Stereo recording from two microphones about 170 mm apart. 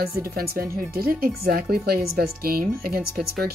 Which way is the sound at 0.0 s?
60° right (ahead or behind).